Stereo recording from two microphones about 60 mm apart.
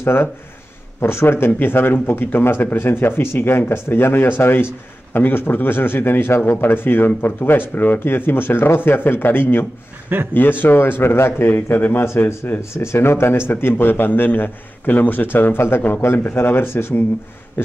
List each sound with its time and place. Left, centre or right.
0.0 s speech: left